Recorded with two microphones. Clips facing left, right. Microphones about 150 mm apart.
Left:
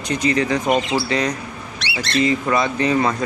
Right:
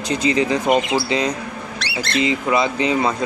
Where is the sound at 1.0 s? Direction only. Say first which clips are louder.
Right 1 dB; 25° right (ahead or behind).